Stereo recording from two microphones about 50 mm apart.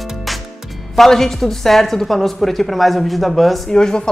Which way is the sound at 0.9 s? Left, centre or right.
Centre.